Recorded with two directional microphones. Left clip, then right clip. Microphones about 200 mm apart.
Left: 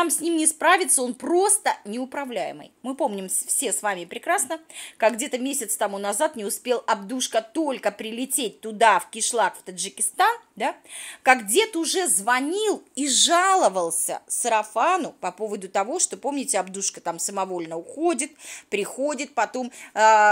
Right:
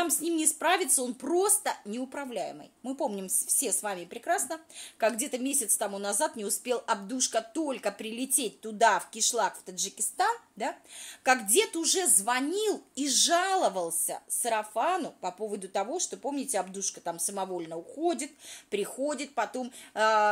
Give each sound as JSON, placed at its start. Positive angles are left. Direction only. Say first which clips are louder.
{"t": 0.0, "sound": "a woman's voice", "louder": "left 6 dB", "side_deg": 20}